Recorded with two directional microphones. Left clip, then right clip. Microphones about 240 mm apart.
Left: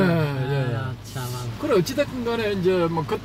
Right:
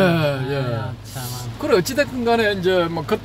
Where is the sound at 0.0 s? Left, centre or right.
Right.